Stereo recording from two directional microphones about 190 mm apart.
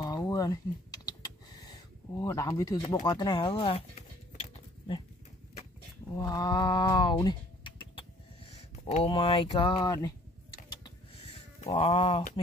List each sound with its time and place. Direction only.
0.0 s typing: 20° left (ahead or behind)
2.9 s speech: 20° left (ahead or behind)
6.1 s speech: 20° left (ahead or behind)
11.6 s speech: 30° left (ahead or behind)